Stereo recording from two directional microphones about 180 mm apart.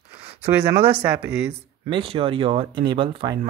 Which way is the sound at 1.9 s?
30° right (ahead or behind).